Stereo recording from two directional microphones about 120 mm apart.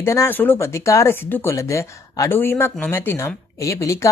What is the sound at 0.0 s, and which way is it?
Speech, 20° left (ahead or behind).